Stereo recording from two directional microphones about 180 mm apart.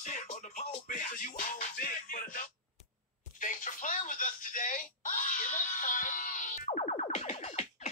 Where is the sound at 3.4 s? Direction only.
45° left (ahead or behind).